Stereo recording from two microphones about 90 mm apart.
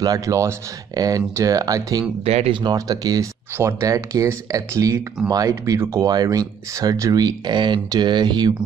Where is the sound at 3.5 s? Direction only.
30° right (ahead or behind); by 8.5 s 55° right (ahead or behind).